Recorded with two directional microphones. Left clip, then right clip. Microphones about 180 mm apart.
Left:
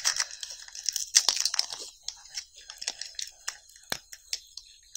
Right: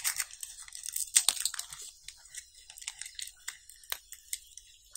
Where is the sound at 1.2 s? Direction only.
15° left (ahead or behind).